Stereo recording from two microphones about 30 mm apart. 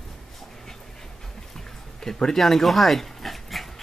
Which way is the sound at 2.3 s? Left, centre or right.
Centre.